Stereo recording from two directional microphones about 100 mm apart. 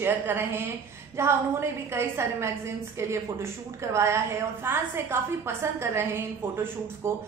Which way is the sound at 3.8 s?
30° right (ahead or behind).